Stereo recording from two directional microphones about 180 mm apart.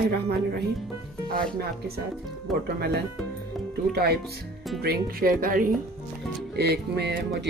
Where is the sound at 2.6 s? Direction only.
60° right (ahead or behind).